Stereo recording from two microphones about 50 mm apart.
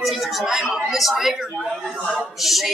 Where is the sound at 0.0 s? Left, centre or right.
Centre.